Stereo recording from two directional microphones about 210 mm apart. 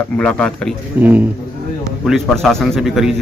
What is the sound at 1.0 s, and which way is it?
A man's voice, 10° right (ahead or behind).